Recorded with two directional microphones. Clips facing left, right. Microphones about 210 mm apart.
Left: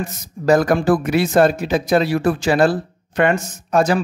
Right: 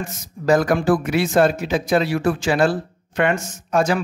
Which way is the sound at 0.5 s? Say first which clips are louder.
Left 2 dB; 40° left (ahead or behind).